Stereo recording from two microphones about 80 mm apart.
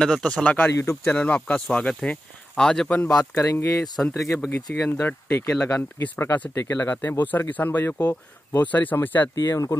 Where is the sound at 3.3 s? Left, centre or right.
Left.